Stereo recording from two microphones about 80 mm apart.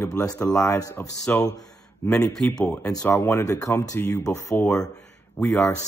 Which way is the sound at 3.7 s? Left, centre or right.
Left.